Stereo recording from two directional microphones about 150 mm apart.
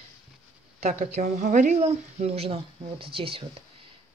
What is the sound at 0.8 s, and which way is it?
Speech, 50° right (ahead or behind).